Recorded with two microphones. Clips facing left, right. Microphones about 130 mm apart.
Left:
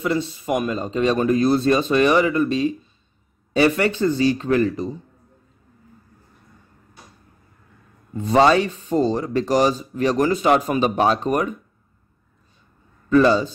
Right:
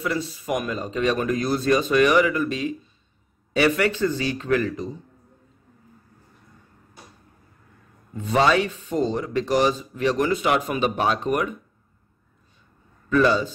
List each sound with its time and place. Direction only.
0.0 s a man's voice: 25° left (ahead or behind)
8.2 s speech: 35° left (ahead or behind)
13.1 s speech: 35° left (ahead or behind)